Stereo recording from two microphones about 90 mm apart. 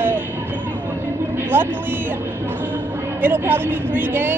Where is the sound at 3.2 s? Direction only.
25° right (ahead or behind).